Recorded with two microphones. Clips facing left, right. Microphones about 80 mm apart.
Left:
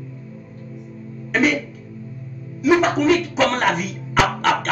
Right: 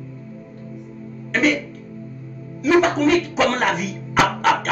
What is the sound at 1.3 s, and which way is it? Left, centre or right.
Music, centre.